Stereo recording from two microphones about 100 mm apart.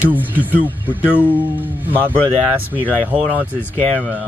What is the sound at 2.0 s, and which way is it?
Speech, 15° left (ahead or behind).